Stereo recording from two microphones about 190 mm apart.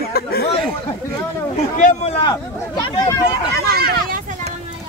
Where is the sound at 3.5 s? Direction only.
55° right (ahead or behind).